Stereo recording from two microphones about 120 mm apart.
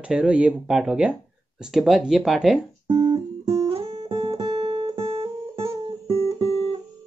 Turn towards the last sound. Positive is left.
turn(degrees=-55)  # may be behind; listen again after turning